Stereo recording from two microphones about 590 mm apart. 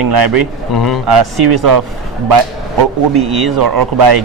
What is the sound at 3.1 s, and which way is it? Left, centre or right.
Speech, right.